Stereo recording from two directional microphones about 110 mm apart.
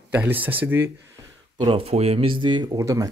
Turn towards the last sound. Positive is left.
turn(degrees=-30)  # may be behind; listen again after turning